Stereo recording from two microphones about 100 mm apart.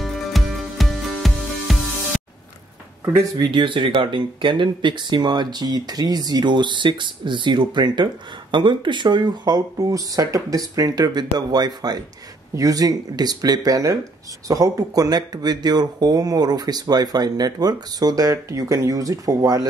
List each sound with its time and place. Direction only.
0.0 s music: centre (ahead or behind)
3.3 s speech: 55° right (ahead or behind); by 19.7 s 40° right (ahead or behind)